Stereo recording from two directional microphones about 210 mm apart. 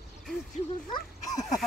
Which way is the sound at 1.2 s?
35° left (ahead or behind).